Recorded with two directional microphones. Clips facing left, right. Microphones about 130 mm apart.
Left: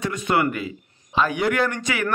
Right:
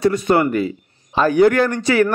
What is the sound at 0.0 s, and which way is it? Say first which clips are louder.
Speech: right 6 dB; 35° right (ahead or behind).